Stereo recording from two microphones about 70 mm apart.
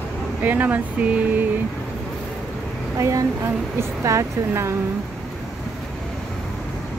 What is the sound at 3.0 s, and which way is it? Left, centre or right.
A woman's voice, right.